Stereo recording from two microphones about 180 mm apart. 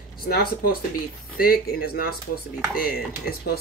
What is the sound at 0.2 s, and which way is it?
Speech, 60° left (ahead or behind).